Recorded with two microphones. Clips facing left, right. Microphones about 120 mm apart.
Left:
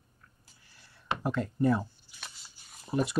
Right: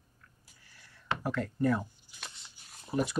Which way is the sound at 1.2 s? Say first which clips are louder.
Left 2 dB; 25° left (ahead or behind).